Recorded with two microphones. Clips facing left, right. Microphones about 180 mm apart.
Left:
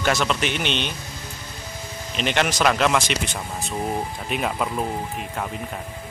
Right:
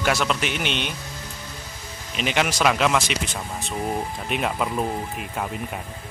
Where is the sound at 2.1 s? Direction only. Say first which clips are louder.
Left 1 dB; 5° right (ahead or behind).